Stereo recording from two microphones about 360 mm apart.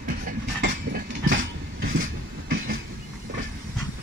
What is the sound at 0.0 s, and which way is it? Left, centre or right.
Train, right.